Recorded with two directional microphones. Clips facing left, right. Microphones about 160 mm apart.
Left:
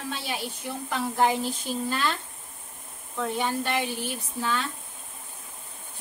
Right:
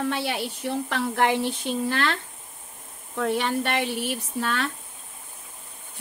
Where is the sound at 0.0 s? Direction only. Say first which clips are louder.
Right 6 dB; 65° right (ahead or behind).